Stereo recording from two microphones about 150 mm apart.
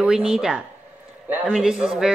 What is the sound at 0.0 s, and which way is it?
Speech, 5° right (ahead or behind).